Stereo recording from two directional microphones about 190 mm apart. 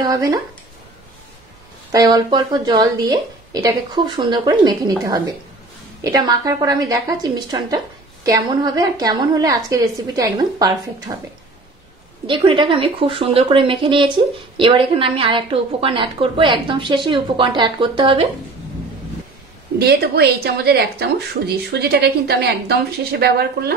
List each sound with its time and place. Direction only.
0.0 s speech: 20° right (ahead or behind)
1.9 s speech: 20° right (ahead or behind)
12.3 s speech: 25° right (ahead or behind)
19.8 s speech: 55° right (ahead or behind)